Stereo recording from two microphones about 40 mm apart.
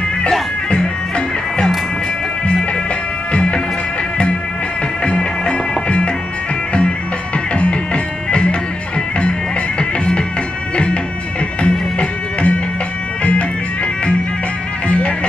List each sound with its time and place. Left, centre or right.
3.3 s music: left
5.0 s music: left
7.5 s music: left
9.8 s music: left
11.6 s music: left
14.9 s music: left